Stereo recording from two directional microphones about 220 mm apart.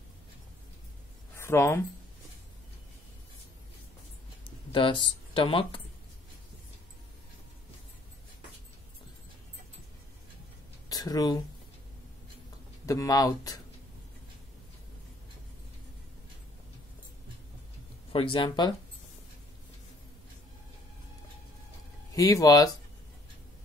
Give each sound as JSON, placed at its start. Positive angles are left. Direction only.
{"t": 1.4, "sound": "speech", "side_deg": 10}
{"t": 4.7, "sound": "speech", "side_deg": 25}
{"t": 10.9, "sound": "speech", "side_deg": 15}
{"t": 12.8, "sound": "speech", "side_deg": 15}
{"t": 18.1, "sound": "speech", "side_deg": 25}
{"t": 22.1, "sound": "speech", "side_deg": 15}